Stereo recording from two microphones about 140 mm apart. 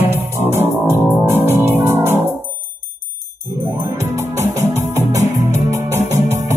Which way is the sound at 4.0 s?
20° right (ahead or behind).